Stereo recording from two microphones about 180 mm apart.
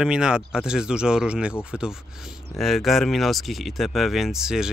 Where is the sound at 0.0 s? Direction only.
5° right (ahead or behind).